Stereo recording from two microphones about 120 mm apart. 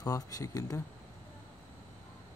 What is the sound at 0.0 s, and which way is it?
Speech, 30° left (ahead or behind).